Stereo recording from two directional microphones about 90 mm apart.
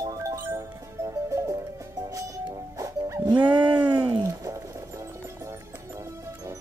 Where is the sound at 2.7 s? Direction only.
35° right (ahead or behind).